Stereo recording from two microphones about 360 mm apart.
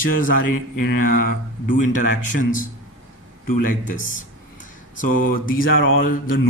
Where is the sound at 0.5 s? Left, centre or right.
Left.